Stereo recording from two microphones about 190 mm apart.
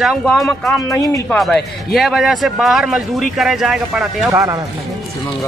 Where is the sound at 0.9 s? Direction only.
15° left (ahead or behind).